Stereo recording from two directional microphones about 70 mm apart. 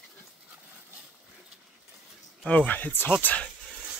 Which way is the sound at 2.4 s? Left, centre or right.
Left.